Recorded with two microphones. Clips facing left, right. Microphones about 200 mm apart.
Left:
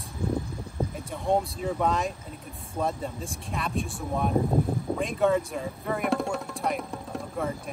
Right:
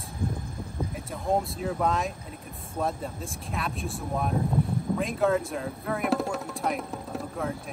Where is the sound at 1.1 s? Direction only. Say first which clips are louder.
Left 1 dB; centre (ahead or behind).